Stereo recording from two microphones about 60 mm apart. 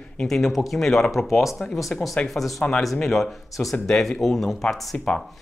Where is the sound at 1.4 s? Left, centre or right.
Centre.